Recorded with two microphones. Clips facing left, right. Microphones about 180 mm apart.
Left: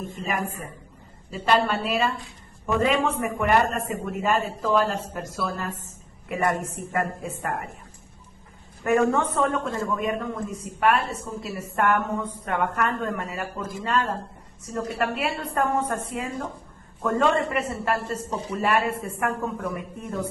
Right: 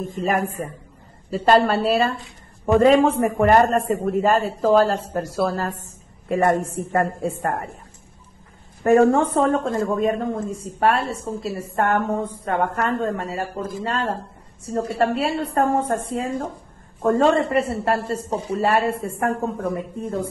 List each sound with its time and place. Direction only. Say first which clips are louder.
0.1 s a woman's voice: right 9 dB; 40° right (ahead or behind)
8.8 s a woman's voice: right 6 dB; 35° right (ahead or behind)